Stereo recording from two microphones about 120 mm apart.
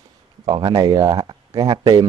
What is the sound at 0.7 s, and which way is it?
Speech, 30° right (ahead or behind).